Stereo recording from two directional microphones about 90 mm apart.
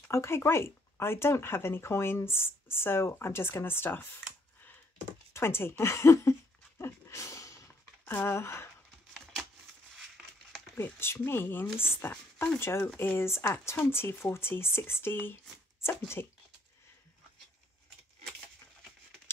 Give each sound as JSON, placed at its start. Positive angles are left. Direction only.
{"t": 0.1, "sound": "speech", "side_deg": 30}
{"t": 6.8, "sound": "a sound", "side_deg": 30}
{"t": 8.0, "sound": "speech", "side_deg": 20}
{"t": 9.1, "sound": "a sound", "side_deg": 0}
{"t": 9.9, "sound": "crumpling", "side_deg": 0}
{"t": 10.8, "sound": "speech", "side_deg": 25}